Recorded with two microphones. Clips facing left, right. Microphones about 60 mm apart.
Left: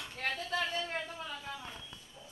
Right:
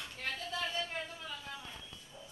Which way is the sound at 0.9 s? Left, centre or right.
Left.